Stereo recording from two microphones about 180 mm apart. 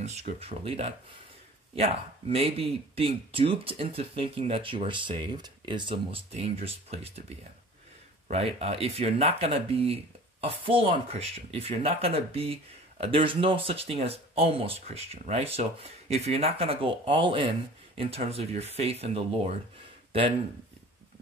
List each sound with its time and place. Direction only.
0.0 s speech: 40° right (ahead or behind)
8.3 s speech: 35° right (ahead or behind)
20.1 s a sound: 30° right (ahead or behind)